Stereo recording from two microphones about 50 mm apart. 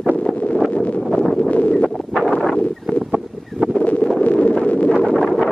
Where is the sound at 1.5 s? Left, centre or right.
Left.